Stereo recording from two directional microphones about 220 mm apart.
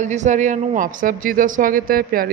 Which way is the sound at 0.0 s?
35° right (ahead or behind).